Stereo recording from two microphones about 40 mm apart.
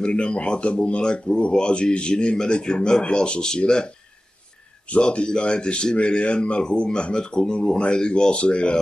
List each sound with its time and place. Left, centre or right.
0.0 s speech: left
5.0 s speech: left